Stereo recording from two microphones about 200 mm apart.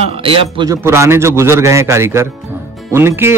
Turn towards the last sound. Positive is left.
turn(degrees=-10)  # may be behind; listen again after turning